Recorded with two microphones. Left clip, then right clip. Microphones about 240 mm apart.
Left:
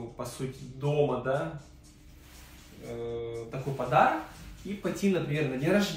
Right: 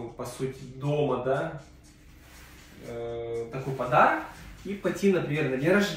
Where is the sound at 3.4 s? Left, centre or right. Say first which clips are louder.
Right 2 dB; centre.